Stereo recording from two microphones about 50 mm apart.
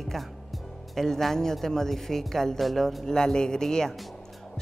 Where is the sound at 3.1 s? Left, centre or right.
Centre.